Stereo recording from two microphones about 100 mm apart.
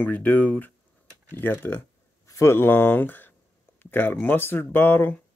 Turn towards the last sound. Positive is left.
turn(degrees=20)  # may be behind; listen again after turning